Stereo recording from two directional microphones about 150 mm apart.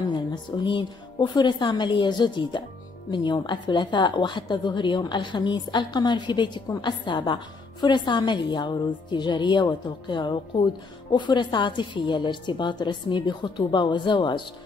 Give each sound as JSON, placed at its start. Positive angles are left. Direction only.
{"t": 0.1, "sound": "a woman's voice", "side_deg": 30}